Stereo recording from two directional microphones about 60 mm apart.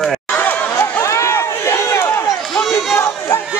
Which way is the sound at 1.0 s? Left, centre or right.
Left.